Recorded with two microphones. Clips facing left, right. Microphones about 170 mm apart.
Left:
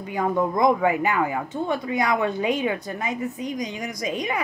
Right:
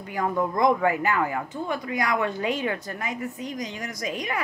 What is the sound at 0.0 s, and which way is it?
Speech, 20° left (ahead or behind).